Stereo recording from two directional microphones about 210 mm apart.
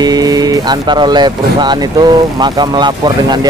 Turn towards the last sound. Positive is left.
turn(degrees=-20)  # may be behind; listen again after turning